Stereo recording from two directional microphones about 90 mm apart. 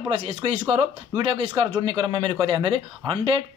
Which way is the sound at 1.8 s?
55° right (ahead or behind).